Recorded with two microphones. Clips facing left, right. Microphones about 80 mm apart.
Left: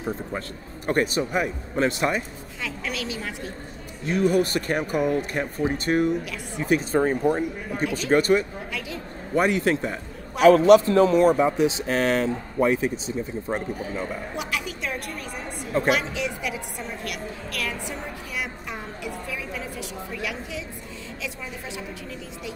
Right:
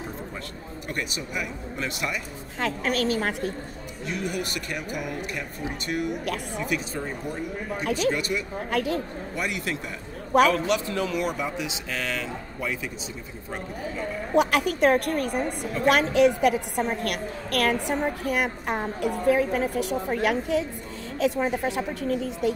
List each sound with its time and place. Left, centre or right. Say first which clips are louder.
0.8 s speech: left 10 dB; left
2.6 s a woman's voice: right 6 dB; right
4.0 s speech: left 9 dB; left
6.2 s a woman's voice: right 4 dB; right
6.6 s speech: left 12 dB; left
8.6 s a woman's voice: right 8 dB; right
9.3 s speech: left 10 dB; left
14.3 s a woman's voice: right 9 dB; right